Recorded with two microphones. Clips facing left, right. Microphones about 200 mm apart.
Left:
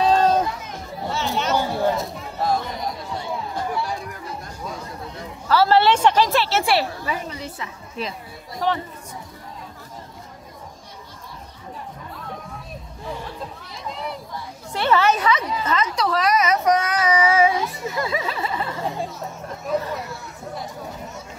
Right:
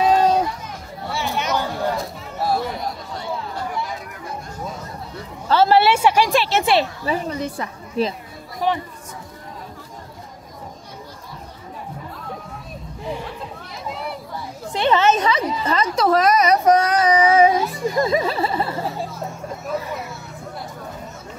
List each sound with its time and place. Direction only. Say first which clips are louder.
0.0 s run: right 1 dB; 10° right (ahead or behind)
1.1 s chatter: even; 15° right (ahead or behind)
5.5 s a woman's voice: right 1 dB; 20° right (ahead or behind)
7.1 s a woman's voice: right 6 dB; 40° right (ahead or behind)
8.5 s speech: right 1 dB; 15° right (ahead or behind)
13.0 s chatter: right 3 dB; 15° right (ahead or behind)
14.7 s speech: right 2 dB; 20° right (ahead or behind); by 16.0 s 35° right (ahead or behind)
16.0 s child singing: right 6 dB; 45° right (ahead or behind)
19.7 s a woman's voice: left 3 dB; 10° right (ahead or behind)